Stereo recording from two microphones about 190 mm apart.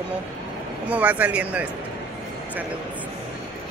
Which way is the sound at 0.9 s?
5° right (ahead or behind).